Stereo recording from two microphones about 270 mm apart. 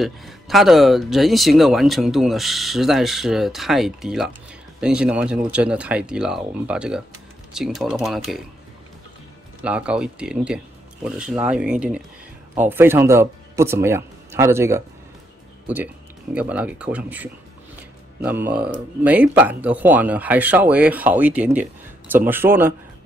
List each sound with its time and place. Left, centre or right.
0.0 s speech: centre
9.6 s speech: centre